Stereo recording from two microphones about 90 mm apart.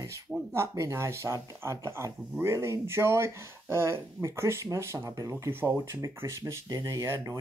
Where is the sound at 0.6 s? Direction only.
30° right (ahead or behind).